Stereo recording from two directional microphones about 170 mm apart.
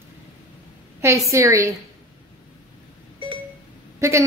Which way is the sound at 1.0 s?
15° right (ahead or behind).